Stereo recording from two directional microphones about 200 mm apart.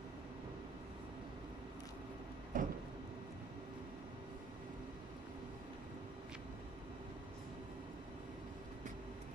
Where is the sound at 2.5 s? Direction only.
40° right (ahead or behind).